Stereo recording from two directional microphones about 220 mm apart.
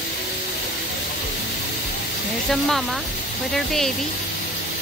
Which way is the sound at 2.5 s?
Centre (ahead or behind).